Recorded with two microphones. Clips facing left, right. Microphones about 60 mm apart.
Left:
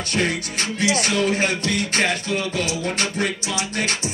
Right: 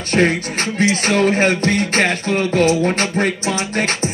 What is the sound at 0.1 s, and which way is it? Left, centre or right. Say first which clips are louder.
Music: right 8 dB; right.